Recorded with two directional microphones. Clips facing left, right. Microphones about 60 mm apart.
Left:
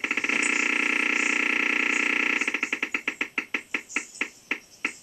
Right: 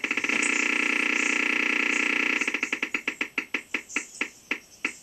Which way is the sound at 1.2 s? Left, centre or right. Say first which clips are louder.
Left 1 dB; centre.